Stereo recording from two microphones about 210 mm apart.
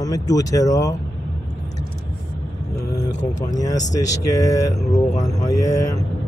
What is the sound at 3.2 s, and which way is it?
Speech, 35° left (ahead or behind).